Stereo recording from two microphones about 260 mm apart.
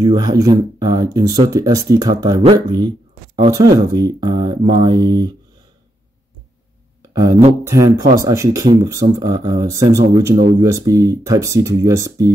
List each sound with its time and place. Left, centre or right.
0.0 s speech: centre
7.0 s a sound: centre
7.6 s speech: centre